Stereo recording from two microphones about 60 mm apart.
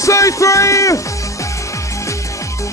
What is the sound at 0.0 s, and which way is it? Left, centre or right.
Music, left.